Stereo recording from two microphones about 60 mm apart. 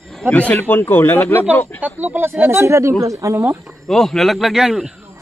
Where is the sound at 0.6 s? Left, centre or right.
Left.